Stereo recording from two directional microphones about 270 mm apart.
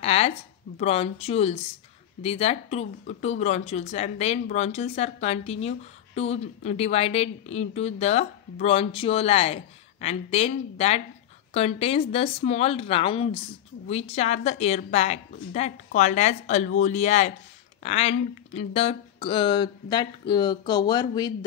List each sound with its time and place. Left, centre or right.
0.0 s speech: left